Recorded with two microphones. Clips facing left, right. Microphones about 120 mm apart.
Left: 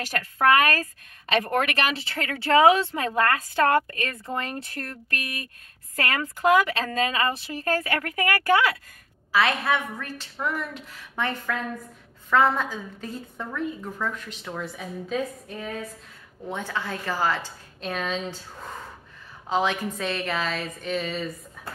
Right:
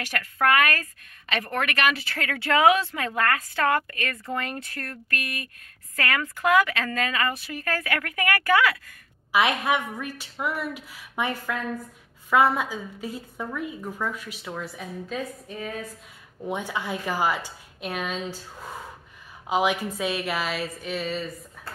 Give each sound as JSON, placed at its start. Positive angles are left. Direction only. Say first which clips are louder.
{"t": 0.0, "sound": "speech", "louder": "left 2 dB", "side_deg": 30}
{"t": 9.3, "sound": "a woman's voice", "louder": "even", "side_deg": -15}
{"t": 16.4, "sound": "a woman's voice", "louder": "right 1 dB", "side_deg": -15}
{"t": 21.6, "sound": "a sound", "louder": "left 3 dB", "side_deg": 0}